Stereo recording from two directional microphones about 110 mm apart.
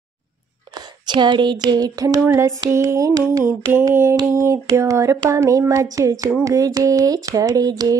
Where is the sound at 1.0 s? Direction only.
45° right (ahead or behind).